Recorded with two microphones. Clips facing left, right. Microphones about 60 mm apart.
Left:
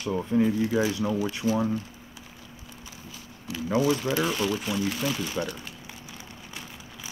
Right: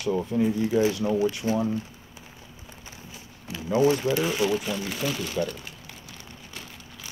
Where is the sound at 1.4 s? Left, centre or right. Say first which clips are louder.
Even; right.